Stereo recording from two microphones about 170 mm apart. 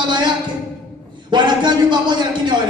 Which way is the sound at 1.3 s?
25° right (ahead or behind).